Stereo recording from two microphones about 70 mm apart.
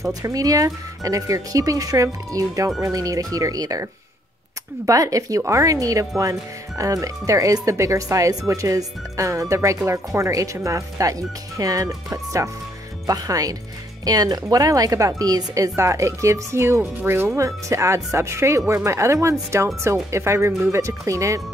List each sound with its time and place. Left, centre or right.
0.1 s speech: right
4.8 s speech: right
15.7 s speech: right